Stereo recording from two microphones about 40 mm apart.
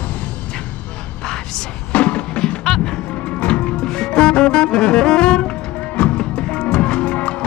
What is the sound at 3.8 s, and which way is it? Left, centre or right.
Music, centre.